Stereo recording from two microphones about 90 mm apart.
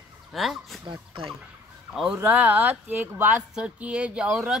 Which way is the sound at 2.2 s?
15° right (ahead or behind).